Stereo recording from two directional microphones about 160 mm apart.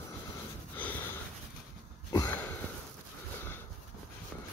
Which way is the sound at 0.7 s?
10° left (ahead or behind).